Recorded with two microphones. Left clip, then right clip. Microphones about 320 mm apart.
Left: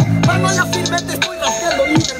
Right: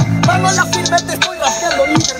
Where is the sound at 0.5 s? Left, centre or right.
Centre.